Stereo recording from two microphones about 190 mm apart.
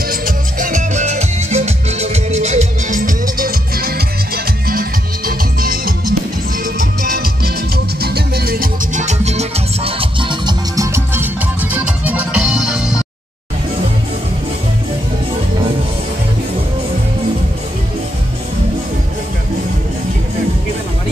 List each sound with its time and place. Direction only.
0.1 s music: 45° right (ahead or behind); by 12.9 s 5° right (ahead or behind)